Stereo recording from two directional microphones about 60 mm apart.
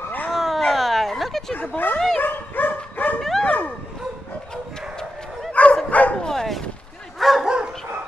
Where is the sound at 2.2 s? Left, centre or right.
Left.